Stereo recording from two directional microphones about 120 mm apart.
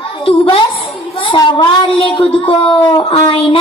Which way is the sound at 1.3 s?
35° left (ahead or behind).